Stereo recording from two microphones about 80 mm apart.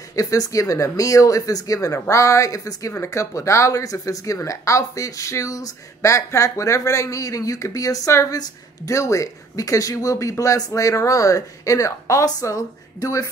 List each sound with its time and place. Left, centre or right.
0.1 s a woman's voice: left